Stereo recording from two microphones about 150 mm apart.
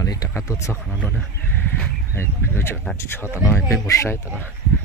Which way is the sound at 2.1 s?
15° left (ahead or behind).